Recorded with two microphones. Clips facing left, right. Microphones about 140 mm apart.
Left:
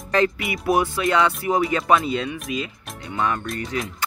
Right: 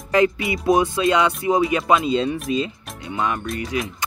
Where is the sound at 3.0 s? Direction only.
20° right (ahead or behind).